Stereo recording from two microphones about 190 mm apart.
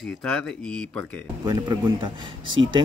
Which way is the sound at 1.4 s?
20° right (ahead or behind).